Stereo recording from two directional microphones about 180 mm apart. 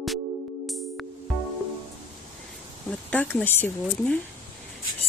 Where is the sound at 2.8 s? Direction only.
5° left (ahead or behind).